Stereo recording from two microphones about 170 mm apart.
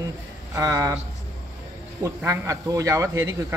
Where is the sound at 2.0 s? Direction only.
15° right (ahead or behind).